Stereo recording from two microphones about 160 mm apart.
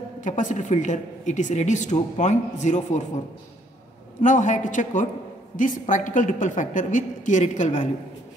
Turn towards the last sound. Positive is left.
turn(degrees=50)  # may be behind; listen again after turning